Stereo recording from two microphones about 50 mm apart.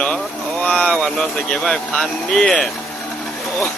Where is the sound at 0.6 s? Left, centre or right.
Left; by 2.7 s centre.